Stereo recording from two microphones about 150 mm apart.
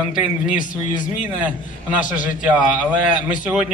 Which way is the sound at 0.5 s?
60° left (ahead or behind).